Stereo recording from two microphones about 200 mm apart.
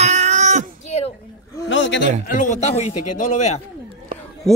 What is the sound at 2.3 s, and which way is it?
A man's voice, 40° left (ahead or behind).